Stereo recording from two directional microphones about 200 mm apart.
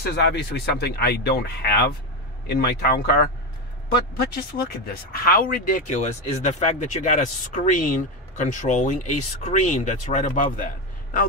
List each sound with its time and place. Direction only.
0.0 s speech: 55° left (ahead or behind)